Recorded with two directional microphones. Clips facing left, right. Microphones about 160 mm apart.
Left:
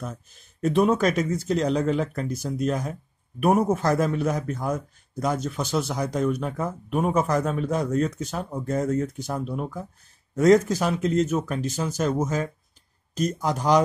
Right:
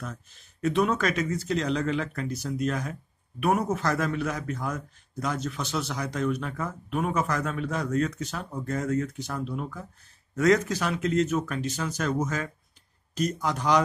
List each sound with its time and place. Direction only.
0.0 s a man's voice: 45° left (ahead or behind)
13.1 s speech: 40° left (ahead or behind)